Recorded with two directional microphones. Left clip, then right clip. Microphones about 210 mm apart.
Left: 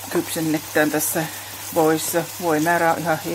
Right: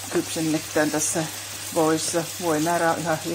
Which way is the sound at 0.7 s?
30° left (ahead or behind).